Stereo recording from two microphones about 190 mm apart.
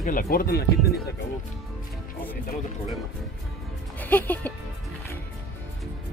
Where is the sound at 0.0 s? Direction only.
50° left (ahead or behind).